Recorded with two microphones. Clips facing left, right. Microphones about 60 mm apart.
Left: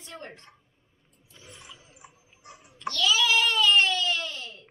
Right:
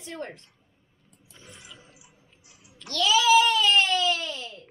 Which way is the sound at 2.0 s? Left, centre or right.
Left.